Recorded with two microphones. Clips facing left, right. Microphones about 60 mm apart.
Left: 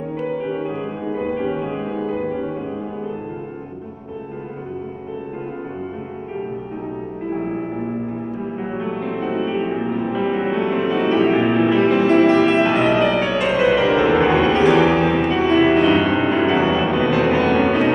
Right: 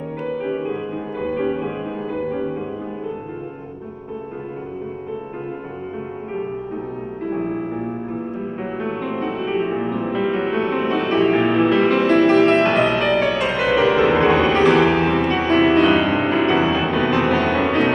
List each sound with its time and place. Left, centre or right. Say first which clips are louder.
1.0 s music: left 2 dB; left
1.3 s music: right 1 dB; centre
8.7 s music: even; centre